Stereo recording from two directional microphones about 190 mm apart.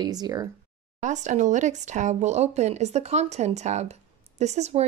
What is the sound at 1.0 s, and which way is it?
Speech, 40° right (ahead or behind).